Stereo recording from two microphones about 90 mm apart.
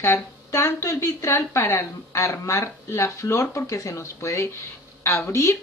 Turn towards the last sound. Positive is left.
turn(degrees=30)  # may be behind; listen again after turning